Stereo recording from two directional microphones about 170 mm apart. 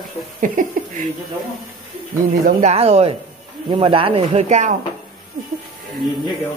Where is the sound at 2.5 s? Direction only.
45° right (ahead or behind).